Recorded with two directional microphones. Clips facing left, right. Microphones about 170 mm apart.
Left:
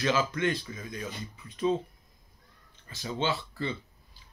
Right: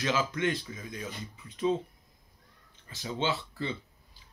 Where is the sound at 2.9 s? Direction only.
20° right (ahead or behind).